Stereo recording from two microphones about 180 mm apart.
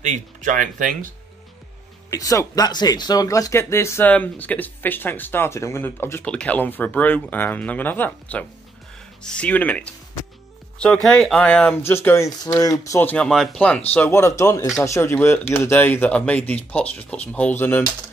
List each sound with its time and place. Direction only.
0.0 s speech: 45° right (ahead or behind)
2.0 s speech: 20° left (ahead or behind)